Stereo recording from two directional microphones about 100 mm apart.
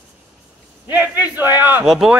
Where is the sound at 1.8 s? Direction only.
5° right (ahead or behind).